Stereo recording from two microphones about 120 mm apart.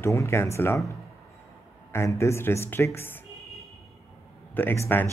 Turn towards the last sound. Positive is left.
turn(degrees=15)  # may be behind; listen again after turning